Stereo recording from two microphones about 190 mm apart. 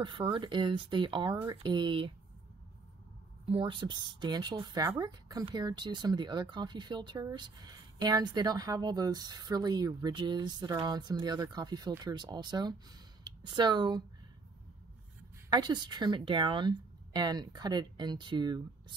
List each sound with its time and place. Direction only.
0.0 s a woman's voice: 25° right (ahead or behind)
3.4 s a woman's voice: 25° right (ahead or behind)
15.5 s a woman's voice: 20° right (ahead or behind)